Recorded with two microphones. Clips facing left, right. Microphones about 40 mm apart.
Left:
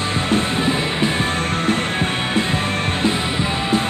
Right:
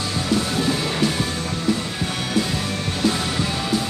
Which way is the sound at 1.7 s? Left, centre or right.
Left.